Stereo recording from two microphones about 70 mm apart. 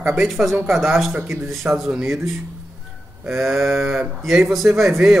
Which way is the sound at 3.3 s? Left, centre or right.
Centre.